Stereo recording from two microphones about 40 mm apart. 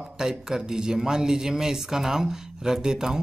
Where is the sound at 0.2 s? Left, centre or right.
Centre.